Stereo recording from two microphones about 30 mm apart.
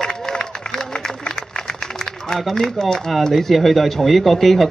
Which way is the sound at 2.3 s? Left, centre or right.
Centre.